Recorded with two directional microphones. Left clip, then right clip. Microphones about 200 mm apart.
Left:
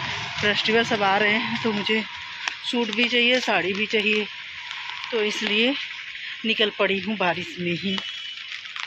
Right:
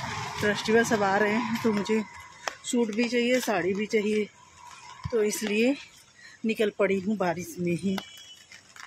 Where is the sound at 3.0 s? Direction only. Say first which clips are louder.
Left 8 dB; 15° right (ahead or behind).